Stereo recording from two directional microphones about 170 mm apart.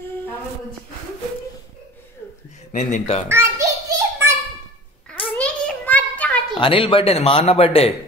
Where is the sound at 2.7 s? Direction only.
40° left (ahead or behind).